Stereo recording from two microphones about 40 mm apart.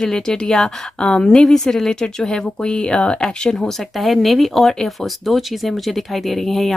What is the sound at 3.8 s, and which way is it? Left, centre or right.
Speech, centre.